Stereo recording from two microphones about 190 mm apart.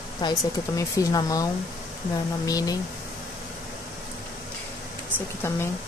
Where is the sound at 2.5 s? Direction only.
20° left (ahead or behind).